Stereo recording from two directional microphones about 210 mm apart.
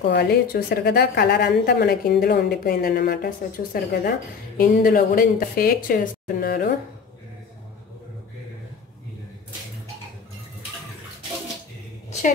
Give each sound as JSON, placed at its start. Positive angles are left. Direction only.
{"t": 0.1, "sound": "a woman's voice", "side_deg": 50}